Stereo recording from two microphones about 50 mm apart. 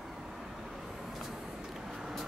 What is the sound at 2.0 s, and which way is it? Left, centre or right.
Vehicle, centre.